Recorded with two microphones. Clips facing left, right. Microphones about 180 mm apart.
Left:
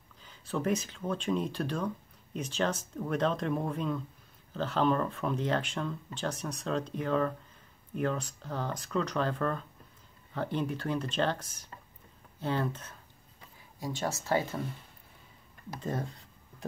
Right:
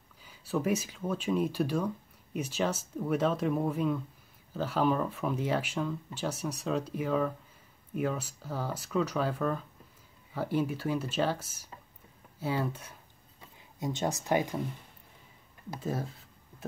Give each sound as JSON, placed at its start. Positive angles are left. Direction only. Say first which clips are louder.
{"t": 0.2, "sound": "speech", "louder": "right 2 dB", "side_deg": -10}
{"t": 13.7, "sound": "speech", "louder": "right 2 dB", "side_deg": -20}
{"t": 15.8, "sound": "a sound", "louder": "even", "side_deg": -5}